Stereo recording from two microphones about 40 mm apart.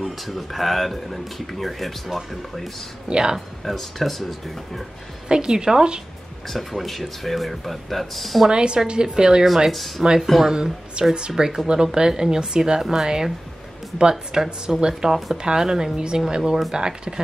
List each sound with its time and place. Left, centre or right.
0.0 s speech: centre
3.1 s a woman's voice: right
3.7 s speech: centre
5.3 s a woman's voice: centre
6.4 s speech: centre
8.5 s a woman's voice: right
9.7 s speech: centre
10.4 s a woman's voice: centre